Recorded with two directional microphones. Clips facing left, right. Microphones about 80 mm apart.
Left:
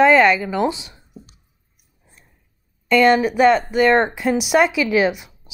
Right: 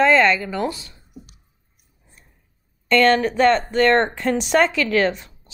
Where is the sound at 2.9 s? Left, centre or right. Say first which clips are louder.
Left 2 dB; centre.